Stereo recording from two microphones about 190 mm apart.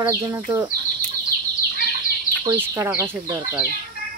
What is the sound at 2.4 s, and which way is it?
Speech, 15° right (ahead or behind).